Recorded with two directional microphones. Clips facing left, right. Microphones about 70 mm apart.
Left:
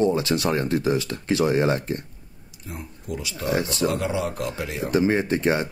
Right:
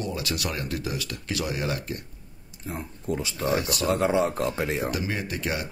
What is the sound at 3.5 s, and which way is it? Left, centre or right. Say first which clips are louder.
Speech: left 4 dB; left.